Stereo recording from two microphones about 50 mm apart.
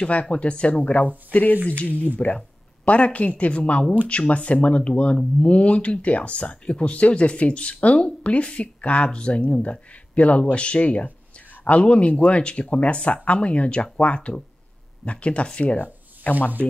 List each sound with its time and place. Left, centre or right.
0.0 s speech: left